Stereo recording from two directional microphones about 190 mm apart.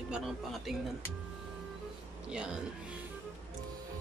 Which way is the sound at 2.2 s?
5° right (ahead or behind).